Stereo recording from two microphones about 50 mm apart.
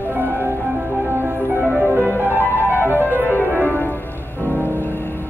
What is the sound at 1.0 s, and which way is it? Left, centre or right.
Music, right.